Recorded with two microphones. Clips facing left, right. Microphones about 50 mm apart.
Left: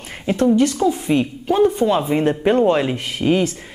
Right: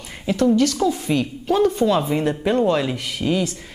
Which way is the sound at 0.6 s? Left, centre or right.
Left.